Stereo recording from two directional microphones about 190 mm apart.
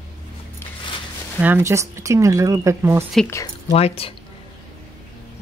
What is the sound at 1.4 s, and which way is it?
Speech, 10° right (ahead or behind).